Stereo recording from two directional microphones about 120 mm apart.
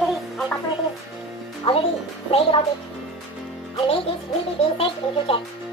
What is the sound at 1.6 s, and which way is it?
Speech, 55° left (ahead or behind).